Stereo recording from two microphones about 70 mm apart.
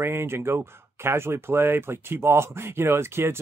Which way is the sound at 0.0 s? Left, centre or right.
Right.